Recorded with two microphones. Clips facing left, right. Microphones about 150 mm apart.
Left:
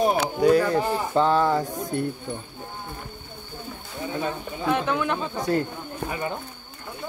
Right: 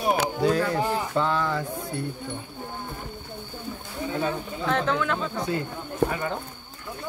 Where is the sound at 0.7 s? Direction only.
35° left (ahead or behind).